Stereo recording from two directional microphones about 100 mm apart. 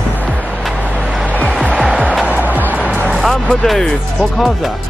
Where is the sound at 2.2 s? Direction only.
15° right (ahead or behind).